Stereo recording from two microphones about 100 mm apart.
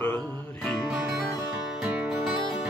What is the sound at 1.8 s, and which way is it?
Music, 10° right (ahead or behind).